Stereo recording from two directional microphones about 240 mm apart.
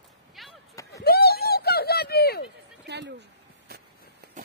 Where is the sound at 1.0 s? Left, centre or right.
Left.